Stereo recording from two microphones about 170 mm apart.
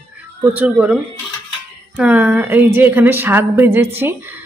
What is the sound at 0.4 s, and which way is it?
Speech, 10° right (ahead or behind).